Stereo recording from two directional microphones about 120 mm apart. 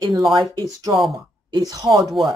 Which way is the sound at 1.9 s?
Centre (ahead or behind).